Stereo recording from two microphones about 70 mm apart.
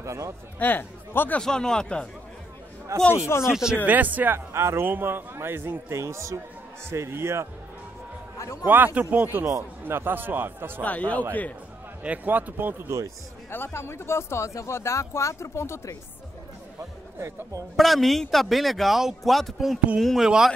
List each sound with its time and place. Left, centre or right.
0.0 s a man's voice: right
0.6 s speech: left
1.4 s speech: centre
2.9 s a man's voice: right
3.4 s speech: centre
3.8 s speech: right
4.5 s a man's voice: right
8.6 s a man's voice: right
10.8 s a man's voice: left
12.0 s speech: right
13.5 s speech: left
17.2 s a man's voice: right
17.7 s speech: centre